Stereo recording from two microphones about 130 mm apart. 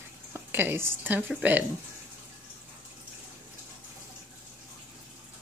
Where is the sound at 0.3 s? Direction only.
15° right (ahead or behind).